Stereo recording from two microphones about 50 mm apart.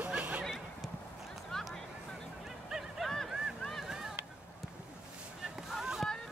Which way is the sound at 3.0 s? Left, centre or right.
Centre.